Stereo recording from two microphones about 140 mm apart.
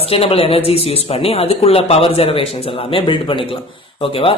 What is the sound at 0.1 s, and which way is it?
A man's voice, 45° left (ahead or behind).